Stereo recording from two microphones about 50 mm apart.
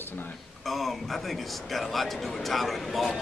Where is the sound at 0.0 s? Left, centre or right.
Left.